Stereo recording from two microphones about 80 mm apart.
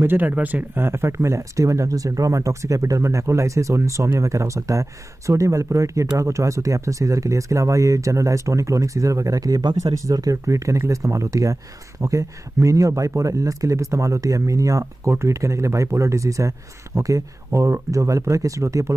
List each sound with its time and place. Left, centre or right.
0.0 s speech: right